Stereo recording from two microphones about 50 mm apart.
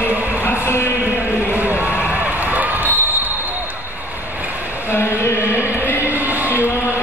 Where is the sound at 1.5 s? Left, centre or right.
Right.